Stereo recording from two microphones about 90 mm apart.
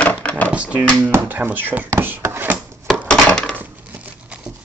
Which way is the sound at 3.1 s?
10° left (ahead or behind).